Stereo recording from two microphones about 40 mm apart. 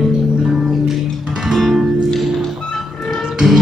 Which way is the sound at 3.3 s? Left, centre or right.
Centre.